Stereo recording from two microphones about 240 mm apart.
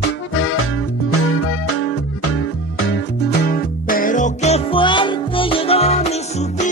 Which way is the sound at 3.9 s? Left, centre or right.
Left.